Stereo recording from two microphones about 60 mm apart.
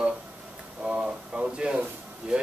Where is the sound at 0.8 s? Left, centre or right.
Centre.